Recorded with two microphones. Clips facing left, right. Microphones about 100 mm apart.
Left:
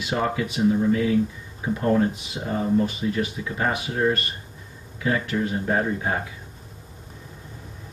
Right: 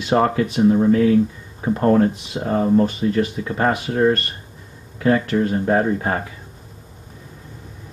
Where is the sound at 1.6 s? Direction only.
50° right (ahead or behind).